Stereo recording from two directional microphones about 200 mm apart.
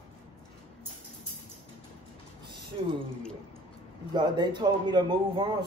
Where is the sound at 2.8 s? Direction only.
30° right (ahead or behind).